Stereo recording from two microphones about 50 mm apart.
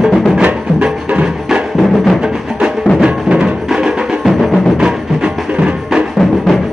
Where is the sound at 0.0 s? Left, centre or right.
Centre.